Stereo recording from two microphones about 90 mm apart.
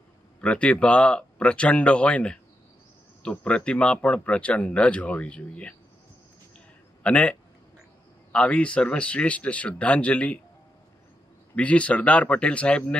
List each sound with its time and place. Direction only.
0.4 s speech: 15° left (ahead or behind)
7.0 s speech: 15° left (ahead or behind)
11.5 s speech: 15° left (ahead or behind)